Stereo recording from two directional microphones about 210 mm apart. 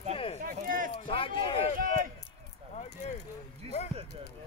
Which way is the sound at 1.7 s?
40° right (ahead or behind).